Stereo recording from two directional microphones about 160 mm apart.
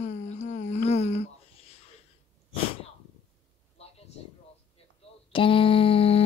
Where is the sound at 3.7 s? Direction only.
40° left (ahead or behind).